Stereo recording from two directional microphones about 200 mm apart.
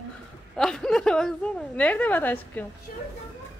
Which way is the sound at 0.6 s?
Centre (ahead or behind).